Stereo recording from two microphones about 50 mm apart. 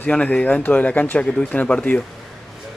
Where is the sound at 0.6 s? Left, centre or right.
Left.